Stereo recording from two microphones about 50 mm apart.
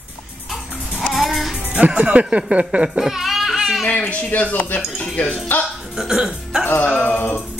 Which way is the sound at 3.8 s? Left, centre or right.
Left.